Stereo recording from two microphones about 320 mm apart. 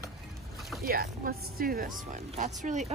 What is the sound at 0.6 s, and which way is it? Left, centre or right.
Boat, centre.